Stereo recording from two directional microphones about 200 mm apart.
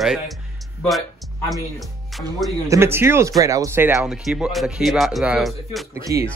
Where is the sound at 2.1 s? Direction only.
Centre (ahead or behind).